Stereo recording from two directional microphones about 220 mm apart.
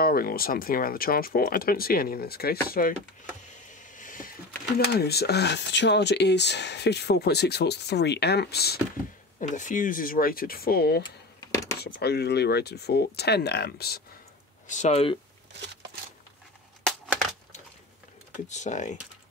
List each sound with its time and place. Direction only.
0.0 s speech: 40° left (ahead or behind)
3.9 s a sound: 35° left (ahead or behind)
4.7 s speech: 45° left (ahead or behind)
9.4 s speech: 35° left (ahead or behind)
11.5 s a sound: 15° left (ahead or behind)
11.8 s speech: 45° left (ahead or behind)
14.7 s speech: 30° left (ahead or behind)
17.1 s crushing: centre (ahead or behind)
18.5 s speech: 35° left (ahead or behind)